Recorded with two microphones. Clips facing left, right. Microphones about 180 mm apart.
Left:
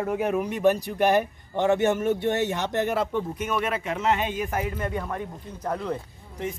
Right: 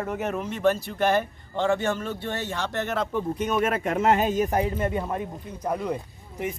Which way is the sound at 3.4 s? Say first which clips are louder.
Right 3 dB; 40° right (ahead or behind).